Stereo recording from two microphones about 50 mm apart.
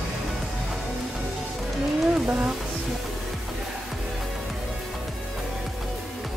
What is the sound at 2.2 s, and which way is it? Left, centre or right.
Speech, right.